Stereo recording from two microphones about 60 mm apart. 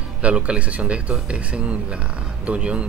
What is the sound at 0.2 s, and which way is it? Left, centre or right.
Speech, centre.